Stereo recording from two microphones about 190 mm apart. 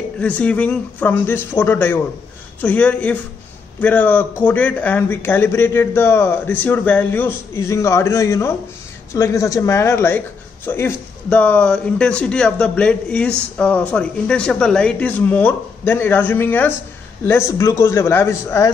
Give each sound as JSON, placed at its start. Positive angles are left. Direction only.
{"t": 0.2, "sound": "a man's voice", "side_deg": 5}